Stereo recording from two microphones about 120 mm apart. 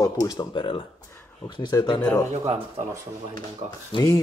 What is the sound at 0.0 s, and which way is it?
Speech, 30° left (ahead or behind).